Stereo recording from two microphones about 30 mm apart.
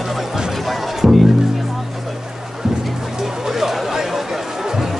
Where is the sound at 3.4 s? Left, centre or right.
Centre.